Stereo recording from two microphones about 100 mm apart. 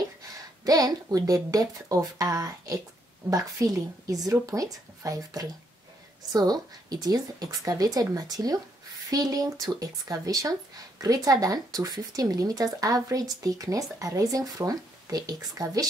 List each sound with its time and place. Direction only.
0.7 s speech: 40° right (ahead or behind)